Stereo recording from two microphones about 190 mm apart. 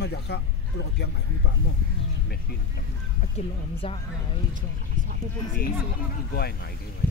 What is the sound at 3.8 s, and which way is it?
Speech, 30° left (ahead or behind).